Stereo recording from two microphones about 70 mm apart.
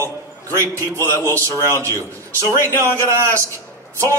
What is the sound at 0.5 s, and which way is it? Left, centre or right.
A man's voice, right.